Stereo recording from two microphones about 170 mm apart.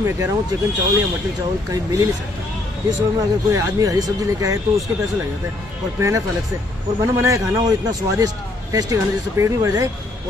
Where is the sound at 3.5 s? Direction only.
20° right (ahead or behind).